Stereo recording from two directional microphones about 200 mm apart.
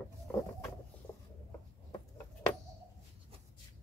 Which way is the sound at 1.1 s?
15° left (ahead or behind).